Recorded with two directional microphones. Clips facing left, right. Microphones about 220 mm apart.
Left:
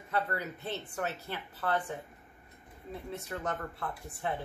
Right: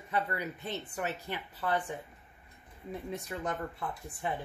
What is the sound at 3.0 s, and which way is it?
Speech, 15° right (ahead or behind).